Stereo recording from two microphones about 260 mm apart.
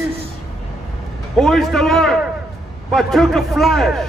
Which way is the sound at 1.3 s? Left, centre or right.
Centre.